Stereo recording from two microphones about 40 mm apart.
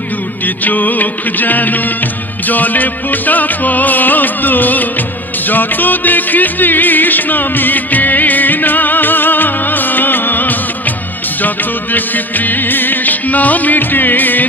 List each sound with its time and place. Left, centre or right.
0.7 s music: left